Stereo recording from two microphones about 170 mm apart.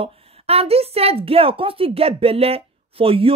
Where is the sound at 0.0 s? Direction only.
35° right (ahead or behind).